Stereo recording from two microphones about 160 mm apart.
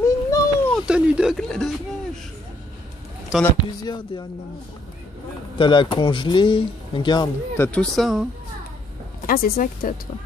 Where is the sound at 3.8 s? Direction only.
25° left (ahead or behind).